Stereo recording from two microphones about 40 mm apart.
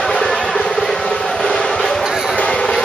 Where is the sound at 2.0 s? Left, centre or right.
Centre.